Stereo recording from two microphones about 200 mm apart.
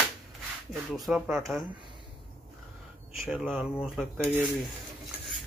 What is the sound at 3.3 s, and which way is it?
Speech, 5° right (ahead or behind).